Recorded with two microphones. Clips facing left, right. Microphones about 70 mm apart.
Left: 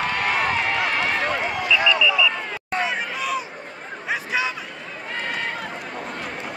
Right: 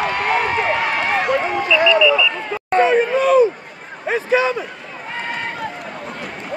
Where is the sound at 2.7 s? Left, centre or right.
Right.